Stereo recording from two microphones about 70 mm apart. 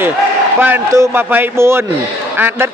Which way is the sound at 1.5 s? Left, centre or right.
Right.